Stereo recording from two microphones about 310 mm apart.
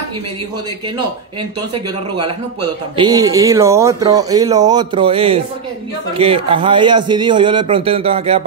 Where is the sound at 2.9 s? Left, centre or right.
Centre.